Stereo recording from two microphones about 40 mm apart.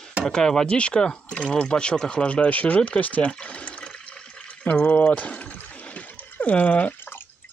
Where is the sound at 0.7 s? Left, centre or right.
Left.